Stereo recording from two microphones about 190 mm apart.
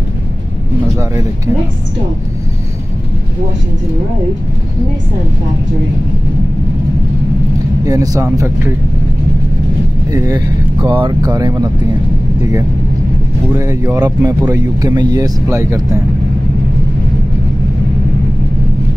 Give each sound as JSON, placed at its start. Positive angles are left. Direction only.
{"t": 7.8, "sound": "speech", "side_deg": -20}
{"t": 10.1, "sound": "speech", "side_deg": -20}
{"t": 13.6, "sound": "speech", "side_deg": -15}